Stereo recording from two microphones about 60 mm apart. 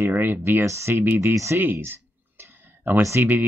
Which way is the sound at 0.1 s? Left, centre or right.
Right.